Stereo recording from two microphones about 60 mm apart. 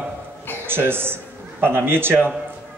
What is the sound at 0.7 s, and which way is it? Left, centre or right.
A man's voice, right.